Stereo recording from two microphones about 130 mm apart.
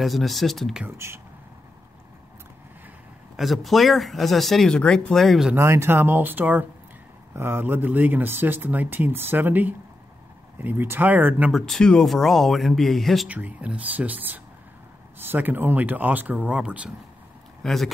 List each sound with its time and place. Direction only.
0.0 s speech: centre (ahead or behind)
0.8 s speech: 20° right (ahead or behind)
3.3 s speech: centre (ahead or behind)
5.5 s speech: 20° right (ahead or behind)
11.5 s speech: 5° left (ahead or behind)
13.3 s speech: 10° right (ahead or behind)
17.6 s speech: centre (ahead or behind)